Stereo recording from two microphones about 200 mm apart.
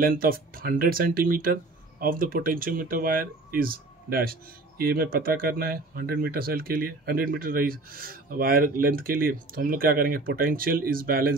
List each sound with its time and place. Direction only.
0.0 s speech: 45° right (ahead or behind)